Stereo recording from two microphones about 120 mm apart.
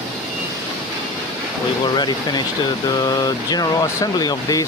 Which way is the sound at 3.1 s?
30° left (ahead or behind).